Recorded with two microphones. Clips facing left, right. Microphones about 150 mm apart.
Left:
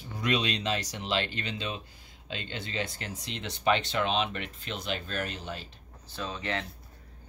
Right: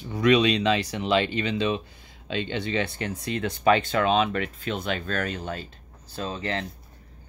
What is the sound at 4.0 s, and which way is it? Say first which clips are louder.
Speech: right 6 dB; 90° right.